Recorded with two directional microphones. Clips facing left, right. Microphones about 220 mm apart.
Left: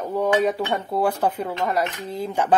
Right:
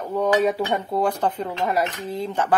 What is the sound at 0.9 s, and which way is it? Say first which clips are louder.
Speech: even; 5° left (ahead or behind).